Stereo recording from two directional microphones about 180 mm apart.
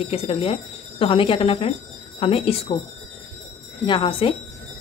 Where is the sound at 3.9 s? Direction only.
30° left (ahead or behind).